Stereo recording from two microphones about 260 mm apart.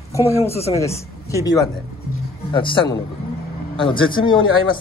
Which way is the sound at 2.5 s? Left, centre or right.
Centre.